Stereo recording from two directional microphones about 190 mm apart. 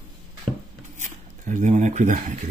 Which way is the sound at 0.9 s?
40° right (ahead or behind).